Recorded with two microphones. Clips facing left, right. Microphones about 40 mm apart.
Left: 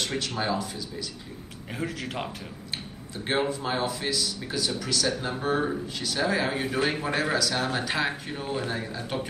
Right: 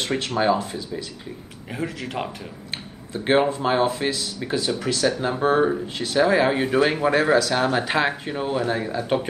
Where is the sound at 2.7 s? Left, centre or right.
Right.